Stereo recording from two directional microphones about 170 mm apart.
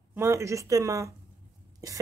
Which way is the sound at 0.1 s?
15° right (ahead or behind).